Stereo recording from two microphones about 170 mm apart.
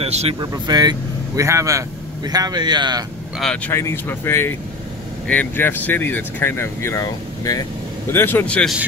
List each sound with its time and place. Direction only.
0.0 s speech: 35° right (ahead or behind)
0.4 s speech: 25° right (ahead or behind)
3.3 s speech: 5° left (ahead or behind)
3.7 s speech: 15° left (ahead or behind)